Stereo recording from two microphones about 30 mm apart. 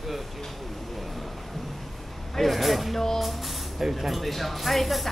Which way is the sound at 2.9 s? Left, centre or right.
Centre.